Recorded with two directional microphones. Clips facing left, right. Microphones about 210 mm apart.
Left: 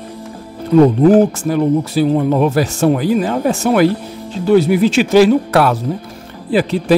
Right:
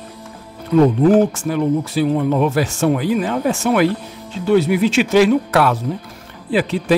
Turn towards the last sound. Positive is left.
turn(degrees=35)  # may be behind; listen again after turning